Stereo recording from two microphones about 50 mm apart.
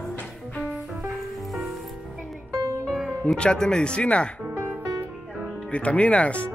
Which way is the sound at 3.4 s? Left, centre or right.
Centre.